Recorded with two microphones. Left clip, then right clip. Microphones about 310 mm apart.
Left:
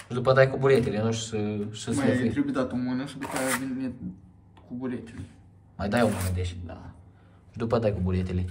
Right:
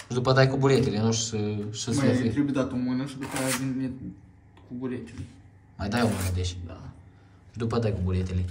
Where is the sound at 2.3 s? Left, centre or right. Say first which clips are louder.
Right 1 dB; centre.